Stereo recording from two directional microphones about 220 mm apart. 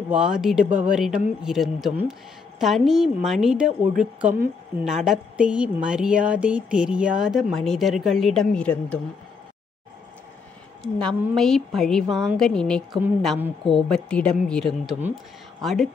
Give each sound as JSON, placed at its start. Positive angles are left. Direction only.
{"t": 0.1, "sound": "a woman's voice", "side_deg": -5}
{"t": 10.8, "sound": "a woman's voice", "side_deg": 0}